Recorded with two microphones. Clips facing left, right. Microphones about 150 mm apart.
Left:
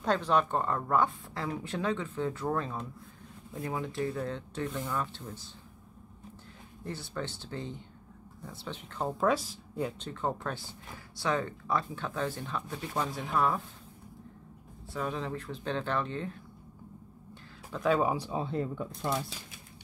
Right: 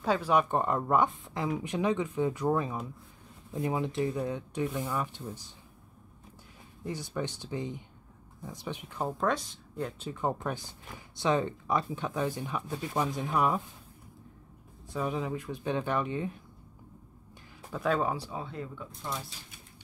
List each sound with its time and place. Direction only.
0.0 s speech: 10° right (ahead or behind)
6.8 s speech: 15° right (ahead or behind)
9.2 s speech: 5° left (ahead or behind)
9.9 s speech: 10° right (ahead or behind)
14.9 s speech: 15° right (ahead or behind)
17.6 s speech: 5° right (ahead or behind)
17.9 s speech: 15° left (ahead or behind)
18.4 s speech: 35° left (ahead or behind)